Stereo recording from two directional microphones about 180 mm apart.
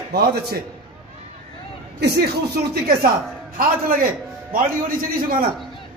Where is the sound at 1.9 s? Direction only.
65° right (ahead or behind).